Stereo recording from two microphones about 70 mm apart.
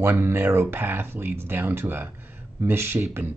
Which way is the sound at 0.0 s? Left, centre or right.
Right.